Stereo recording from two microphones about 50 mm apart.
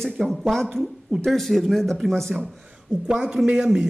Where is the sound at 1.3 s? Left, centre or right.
Centre.